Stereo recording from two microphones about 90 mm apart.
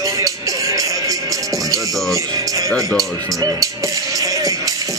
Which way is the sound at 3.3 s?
40° right (ahead or behind).